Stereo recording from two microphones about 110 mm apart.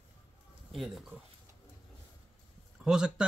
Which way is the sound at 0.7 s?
Centre (ahead or behind).